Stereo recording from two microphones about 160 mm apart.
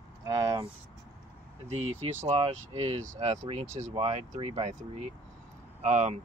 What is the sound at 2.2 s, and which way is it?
Speech, 40° right (ahead or behind).